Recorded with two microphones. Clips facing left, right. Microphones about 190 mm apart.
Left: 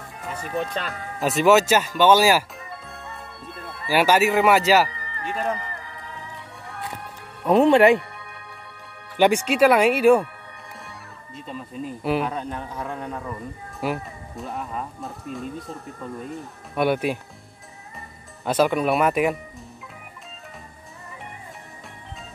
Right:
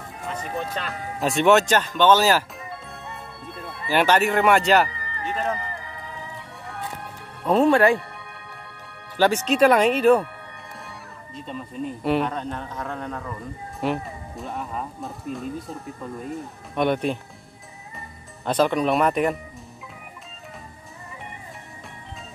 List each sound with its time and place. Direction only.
0.2 s speech: 5° left (ahead or behind)
3.4 s music: centre (ahead or behind)
3.9 s speech: 5° left (ahead or behind)
6.7 s music: centre (ahead or behind)
7.5 s speech: 20° left (ahead or behind)
9.2 s speech: 10° left (ahead or behind)